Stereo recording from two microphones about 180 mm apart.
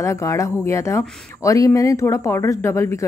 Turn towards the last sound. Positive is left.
turn(degrees=15)  # may be behind; listen again after turning